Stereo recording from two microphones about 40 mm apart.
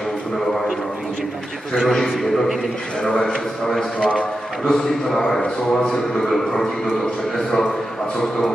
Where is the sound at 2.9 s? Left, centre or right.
Centre.